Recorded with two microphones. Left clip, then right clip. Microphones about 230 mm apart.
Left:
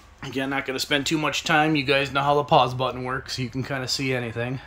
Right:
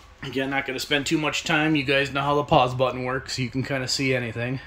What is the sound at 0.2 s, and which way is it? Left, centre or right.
Speech, centre.